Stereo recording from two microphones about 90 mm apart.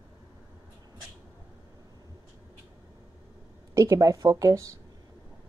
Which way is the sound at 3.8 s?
40° right (ahead or behind).